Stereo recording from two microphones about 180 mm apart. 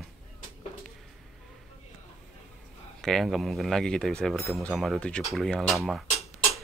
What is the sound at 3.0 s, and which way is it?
Speech, centre (ahead or behind).